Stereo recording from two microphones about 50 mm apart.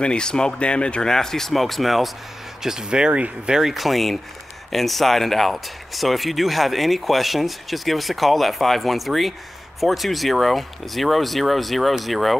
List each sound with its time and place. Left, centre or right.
0.0 s speech: centre
2.6 s speech: centre
3.5 s speech: centre